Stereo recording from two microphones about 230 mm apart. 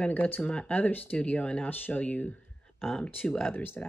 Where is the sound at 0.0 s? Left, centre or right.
Centre.